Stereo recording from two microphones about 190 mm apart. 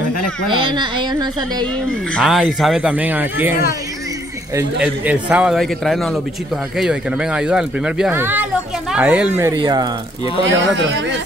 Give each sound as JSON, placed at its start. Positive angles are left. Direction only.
{"t": 0.5, "sound": "a woman's voice", "side_deg": -25}
{"t": 2.1, "sound": "speech", "side_deg": 0}
{"t": 4.8, "sound": "speech", "side_deg": -10}
{"t": 9.4, "sound": "a woman's voice", "side_deg": -20}